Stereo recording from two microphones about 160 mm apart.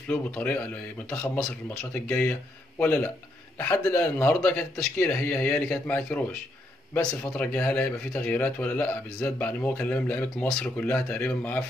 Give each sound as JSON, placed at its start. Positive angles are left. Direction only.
{"t": 0.1, "sound": "speech", "side_deg": 10}